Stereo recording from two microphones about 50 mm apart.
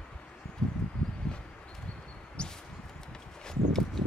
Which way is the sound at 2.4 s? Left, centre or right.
Centre.